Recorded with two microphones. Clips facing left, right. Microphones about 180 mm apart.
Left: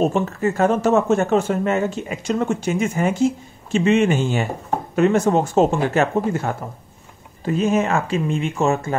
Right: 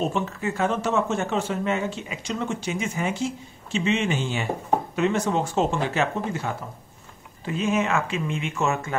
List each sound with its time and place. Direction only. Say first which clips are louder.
0.0 s speech: left 7 dB; 45° left (ahead or behind)